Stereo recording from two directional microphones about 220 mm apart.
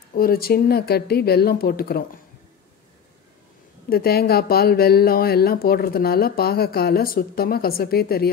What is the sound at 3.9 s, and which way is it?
Speech, 45° left (ahead or behind).